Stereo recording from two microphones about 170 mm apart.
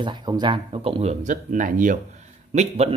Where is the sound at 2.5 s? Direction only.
40° right (ahead or behind).